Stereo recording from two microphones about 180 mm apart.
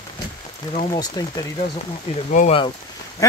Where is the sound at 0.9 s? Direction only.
20° left (ahead or behind).